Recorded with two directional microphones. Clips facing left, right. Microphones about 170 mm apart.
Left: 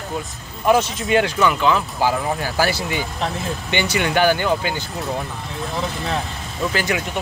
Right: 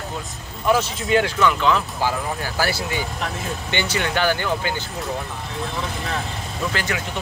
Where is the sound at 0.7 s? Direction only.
20° left (ahead or behind).